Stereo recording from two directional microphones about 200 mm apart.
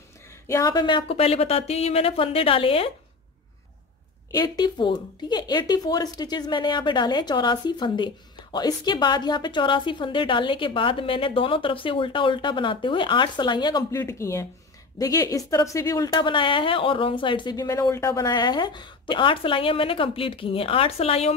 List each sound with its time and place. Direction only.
0.5 s speech: 15° left (ahead or behind)
4.3 s speech: 20° left (ahead or behind)